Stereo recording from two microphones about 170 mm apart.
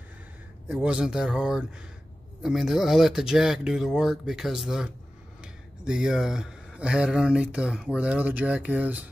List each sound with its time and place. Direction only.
0.7 s speech: 5° right (ahead or behind)